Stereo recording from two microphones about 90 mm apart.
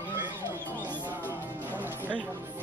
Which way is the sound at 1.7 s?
20° right (ahead or behind).